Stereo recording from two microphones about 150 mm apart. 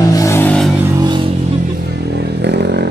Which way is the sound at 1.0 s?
30° right (ahead or behind).